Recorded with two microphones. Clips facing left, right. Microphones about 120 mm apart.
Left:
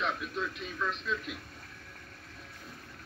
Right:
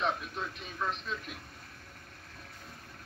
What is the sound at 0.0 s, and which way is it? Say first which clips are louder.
Television: even; 30° right (ahead or behind).